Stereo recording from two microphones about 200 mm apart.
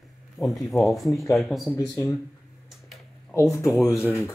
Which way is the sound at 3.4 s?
15° left (ahead or behind).